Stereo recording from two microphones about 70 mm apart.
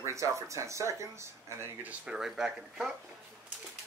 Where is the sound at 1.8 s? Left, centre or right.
Right.